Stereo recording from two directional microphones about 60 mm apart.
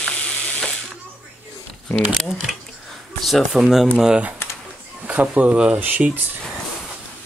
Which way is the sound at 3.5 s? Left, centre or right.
Centre.